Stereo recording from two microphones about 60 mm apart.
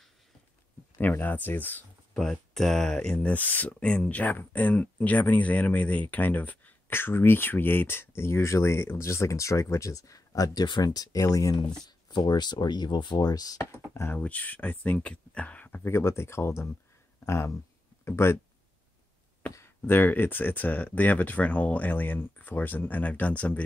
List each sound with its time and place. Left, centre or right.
0.9 s speech: left
2.1 s speech: centre
3.3 s speech: left
3.8 s speech: centre
6.9 s speech: left
13.2 s speech: left
14.1 s speech: left
15.8 s speech: left
18.0 s speech: left
19.9 s speech: left